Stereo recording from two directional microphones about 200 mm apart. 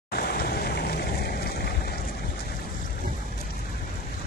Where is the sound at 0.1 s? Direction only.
50° left (ahead or behind).